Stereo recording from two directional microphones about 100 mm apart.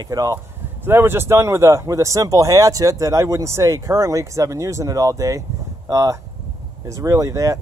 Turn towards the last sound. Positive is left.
turn(degrees=-35)  # may be behind; listen again after turning